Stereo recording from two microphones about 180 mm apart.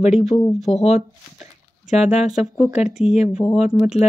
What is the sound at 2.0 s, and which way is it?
Speech, 5° right (ahead or behind).